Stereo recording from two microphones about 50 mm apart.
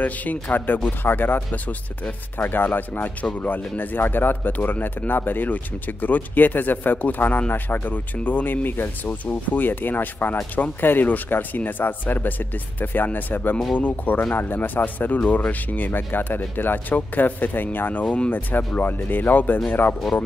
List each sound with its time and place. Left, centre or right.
0.0 s speech: left